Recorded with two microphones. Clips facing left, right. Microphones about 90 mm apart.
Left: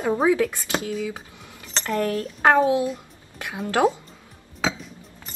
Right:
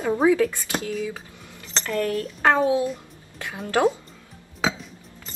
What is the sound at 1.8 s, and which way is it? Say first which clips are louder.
Speech: left 1 dB; 25° left (ahead or behind).